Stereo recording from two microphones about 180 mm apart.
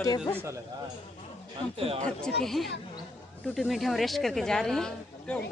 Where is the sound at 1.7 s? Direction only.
35° right (ahead or behind).